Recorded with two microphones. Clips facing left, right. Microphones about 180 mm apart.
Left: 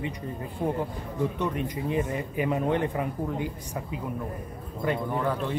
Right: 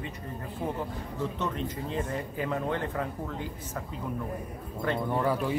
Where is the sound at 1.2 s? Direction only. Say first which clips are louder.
Left 4 dB; 15° left (ahead or behind).